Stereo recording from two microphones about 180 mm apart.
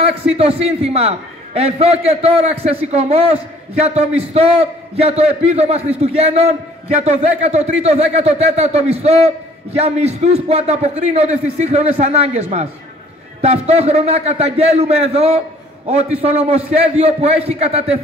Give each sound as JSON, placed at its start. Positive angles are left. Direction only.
{"t": 0.4, "sound": "speech", "side_deg": -35}